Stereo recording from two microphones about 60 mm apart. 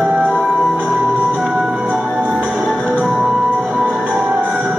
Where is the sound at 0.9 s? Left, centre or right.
Right.